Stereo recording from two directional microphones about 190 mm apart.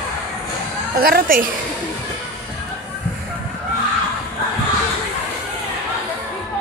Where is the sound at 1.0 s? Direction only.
50° right (ahead or behind).